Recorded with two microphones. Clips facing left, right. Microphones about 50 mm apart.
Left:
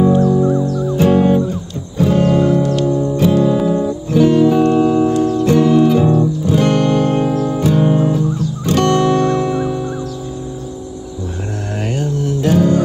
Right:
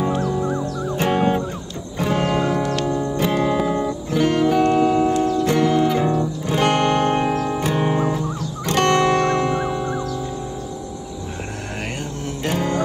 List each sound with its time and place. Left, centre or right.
0.0 s music: right
12.0 s music: right